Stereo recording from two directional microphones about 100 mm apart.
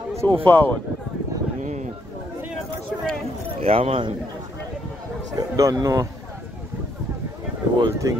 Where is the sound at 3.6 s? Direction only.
75° right (ahead or behind).